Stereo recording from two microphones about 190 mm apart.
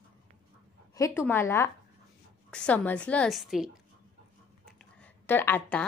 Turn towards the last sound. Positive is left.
turn(degrees=10)  # may be behind; listen again after turning